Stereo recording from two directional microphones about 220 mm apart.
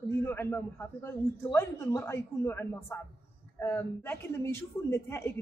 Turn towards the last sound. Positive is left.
turn(degrees=10)  # may be behind; listen again after turning